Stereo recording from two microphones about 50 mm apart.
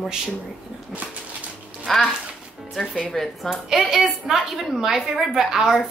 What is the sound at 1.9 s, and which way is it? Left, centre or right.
Speech, centre.